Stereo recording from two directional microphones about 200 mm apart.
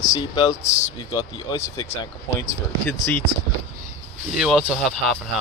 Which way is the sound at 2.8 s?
10° left (ahead or behind).